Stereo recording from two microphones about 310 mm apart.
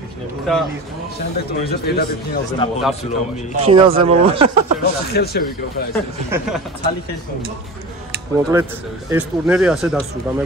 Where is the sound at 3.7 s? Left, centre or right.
Centre.